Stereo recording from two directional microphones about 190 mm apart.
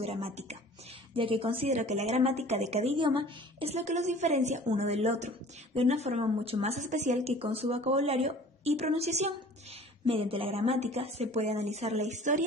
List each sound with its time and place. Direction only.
0.0 s a woman's voice: 30° right (ahead or behind)